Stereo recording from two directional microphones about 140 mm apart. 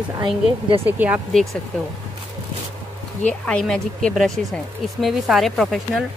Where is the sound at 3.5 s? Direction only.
5° left (ahead or behind).